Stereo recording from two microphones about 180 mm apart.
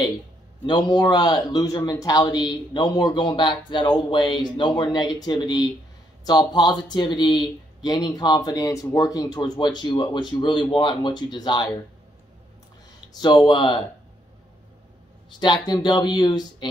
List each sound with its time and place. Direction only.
0.7 s speech: 25° left (ahead or behind)
13.1 s speech: 25° left (ahead or behind)
15.4 s speech: 25° left (ahead or behind)